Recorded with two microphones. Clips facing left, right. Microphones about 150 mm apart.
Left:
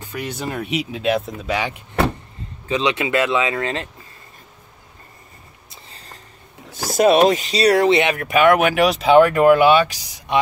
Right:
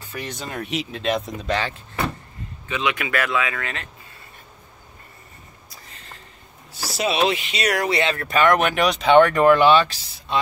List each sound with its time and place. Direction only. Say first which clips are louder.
0.2 s speech: left 4 dB; 10° left (ahead or behind)
2.7 s speech: left 5 dB; 30° left (ahead or behind)
5.7 s a sound: left 2 dB; 35° left (ahead or behind)
6.7 s speech: left 10 dB; 50° left (ahead or behind); by 10.4 s 15° left (ahead or behind)